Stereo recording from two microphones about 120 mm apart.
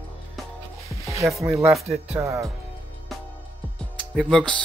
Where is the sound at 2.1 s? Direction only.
25° right (ahead or behind).